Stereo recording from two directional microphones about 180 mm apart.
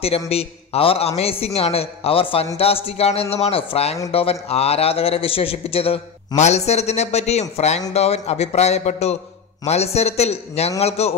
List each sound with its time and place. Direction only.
0.0 s a man's voice: 35° left (ahead or behind)